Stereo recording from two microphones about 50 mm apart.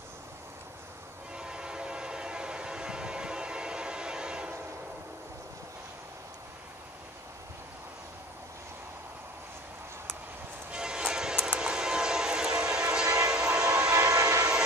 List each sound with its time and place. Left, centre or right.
1.3 s train: centre
10.7 s train: centre
13.9 s train: right